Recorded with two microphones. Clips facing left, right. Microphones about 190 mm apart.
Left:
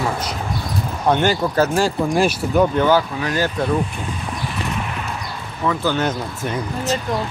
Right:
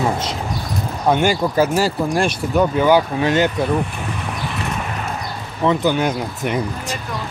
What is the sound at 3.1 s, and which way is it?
Speech, 25° right (ahead or behind).